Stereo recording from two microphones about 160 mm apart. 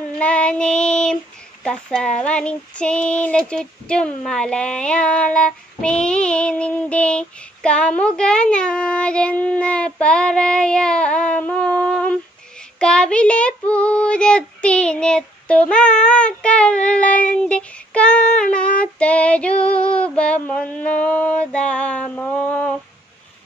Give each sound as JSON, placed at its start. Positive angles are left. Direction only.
{"t": 0.2, "sound": "child singing", "side_deg": 5}
{"t": 17.5, "sound": "female singing", "side_deg": 5}